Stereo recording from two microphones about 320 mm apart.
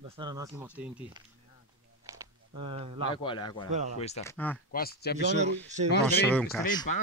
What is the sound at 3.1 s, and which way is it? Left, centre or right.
Speech, centre.